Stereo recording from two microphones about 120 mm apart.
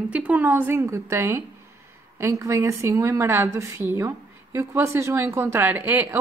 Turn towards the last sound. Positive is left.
turn(degrees=-15)  # may be behind; listen again after turning